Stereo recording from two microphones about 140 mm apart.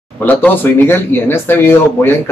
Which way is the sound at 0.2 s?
15° left (ahead or behind).